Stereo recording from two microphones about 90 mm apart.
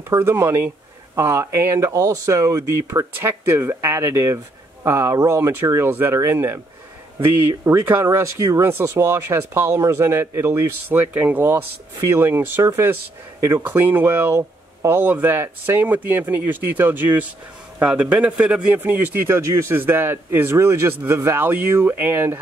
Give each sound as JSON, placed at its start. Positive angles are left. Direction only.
{"t": 0.1, "sound": "a man's voice", "side_deg": -30}
{"t": 18.8, "sound": "speech", "side_deg": -25}